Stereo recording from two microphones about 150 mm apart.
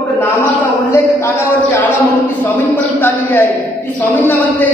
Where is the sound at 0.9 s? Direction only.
20° left (ahead or behind).